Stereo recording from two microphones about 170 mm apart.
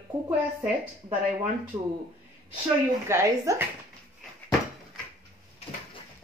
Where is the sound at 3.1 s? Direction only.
15° right (ahead or behind).